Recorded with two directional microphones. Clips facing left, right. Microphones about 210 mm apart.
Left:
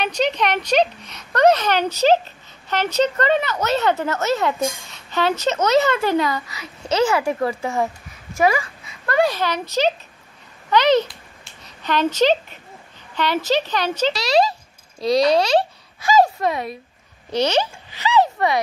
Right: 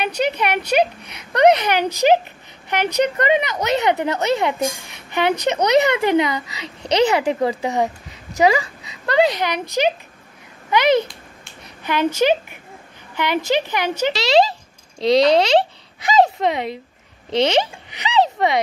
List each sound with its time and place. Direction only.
0.0 s a child's voice: 10° right (ahead or behind)
14.1 s a child's voice: 25° right (ahead or behind)